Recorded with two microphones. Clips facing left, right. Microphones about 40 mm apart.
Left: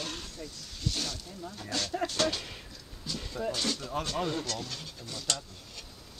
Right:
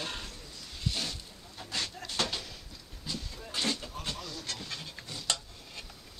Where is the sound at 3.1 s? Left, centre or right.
Centre.